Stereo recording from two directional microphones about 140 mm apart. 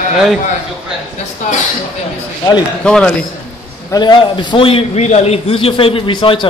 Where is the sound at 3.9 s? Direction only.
30° left (ahead or behind).